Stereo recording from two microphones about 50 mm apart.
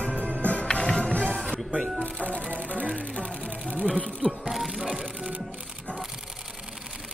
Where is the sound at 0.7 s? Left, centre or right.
Centre.